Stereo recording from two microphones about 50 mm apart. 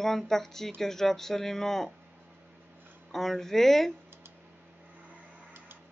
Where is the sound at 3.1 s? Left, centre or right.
Centre.